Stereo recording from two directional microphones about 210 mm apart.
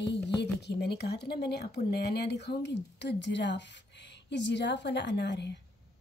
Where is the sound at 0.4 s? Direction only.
55° left (ahead or behind).